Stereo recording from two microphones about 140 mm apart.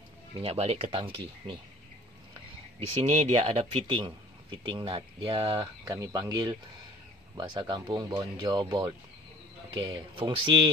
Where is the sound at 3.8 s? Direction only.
35° right (ahead or behind).